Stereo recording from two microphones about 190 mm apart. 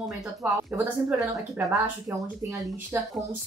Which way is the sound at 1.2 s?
15° right (ahead or behind).